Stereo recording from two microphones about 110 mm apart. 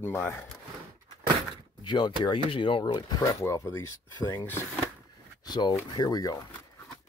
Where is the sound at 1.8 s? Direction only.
45° left (ahead or behind).